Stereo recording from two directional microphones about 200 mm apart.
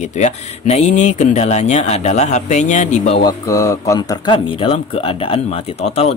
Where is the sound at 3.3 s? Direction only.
15° left (ahead or behind).